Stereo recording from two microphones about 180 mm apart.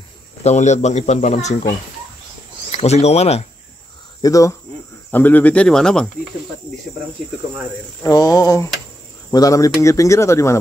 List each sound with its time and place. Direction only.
0.4 s speech: 40° left (ahead or behind)
2.8 s speech: 35° left (ahead or behind)
4.2 s speech: 20° left (ahead or behind)
8.0 s speech: 20° left (ahead or behind)